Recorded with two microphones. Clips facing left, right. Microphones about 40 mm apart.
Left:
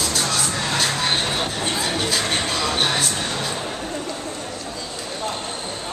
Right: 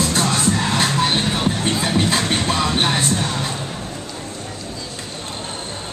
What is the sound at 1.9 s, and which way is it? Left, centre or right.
Music, right.